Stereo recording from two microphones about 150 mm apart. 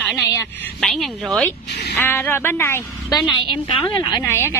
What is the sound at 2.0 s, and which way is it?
A woman's voice, 15° left (ahead or behind).